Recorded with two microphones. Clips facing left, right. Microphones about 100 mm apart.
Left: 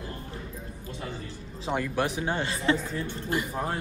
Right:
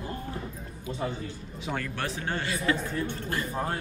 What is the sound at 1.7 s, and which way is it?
A man's voice, 15° left (ahead or behind).